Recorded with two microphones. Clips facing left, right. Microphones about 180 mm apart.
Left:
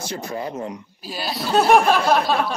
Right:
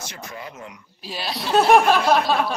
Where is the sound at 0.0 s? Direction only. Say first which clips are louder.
Left 8 dB; 35° left (ahead or behind).